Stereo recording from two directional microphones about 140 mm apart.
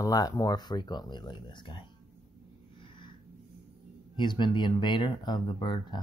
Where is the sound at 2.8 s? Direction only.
35° left (ahead or behind).